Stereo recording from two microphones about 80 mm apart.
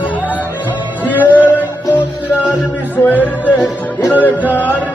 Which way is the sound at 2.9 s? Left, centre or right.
Left.